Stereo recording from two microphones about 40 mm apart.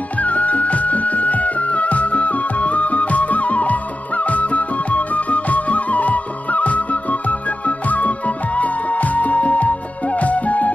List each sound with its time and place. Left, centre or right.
0.2 s music: left